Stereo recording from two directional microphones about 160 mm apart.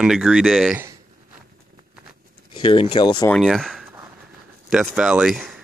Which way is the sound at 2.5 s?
35° left (ahead or behind).